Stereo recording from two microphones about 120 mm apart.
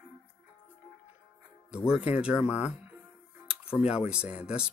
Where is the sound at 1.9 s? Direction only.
10° right (ahead or behind).